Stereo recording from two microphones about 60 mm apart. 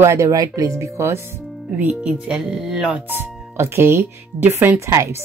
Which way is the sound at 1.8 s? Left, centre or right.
Right.